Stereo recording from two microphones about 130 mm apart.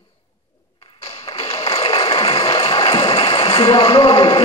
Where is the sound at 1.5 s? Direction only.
50° left (ahead or behind).